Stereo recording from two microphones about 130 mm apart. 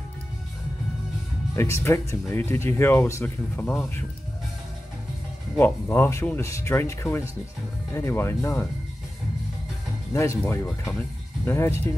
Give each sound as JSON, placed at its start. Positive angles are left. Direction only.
{"t": 1.5, "sound": "speech", "side_deg": 20}
{"t": 3.6, "sound": "speech", "side_deg": 5}
{"t": 5.6, "sound": "speech", "side_deg": 15}
{"t": 10.1, "sound": "speech", "side_deg": 25}